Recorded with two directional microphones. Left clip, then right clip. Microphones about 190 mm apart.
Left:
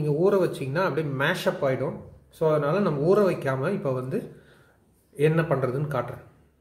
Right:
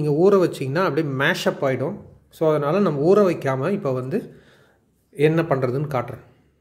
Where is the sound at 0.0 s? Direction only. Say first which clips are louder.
Right 5 dB; 50° right (ahead or behind).